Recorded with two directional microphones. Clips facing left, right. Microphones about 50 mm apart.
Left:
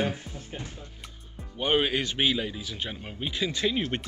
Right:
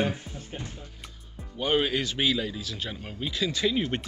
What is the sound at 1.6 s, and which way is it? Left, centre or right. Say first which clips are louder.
Speech: even; left.